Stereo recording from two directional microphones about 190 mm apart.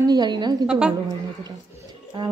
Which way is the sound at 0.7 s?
5° right (ahead or behind).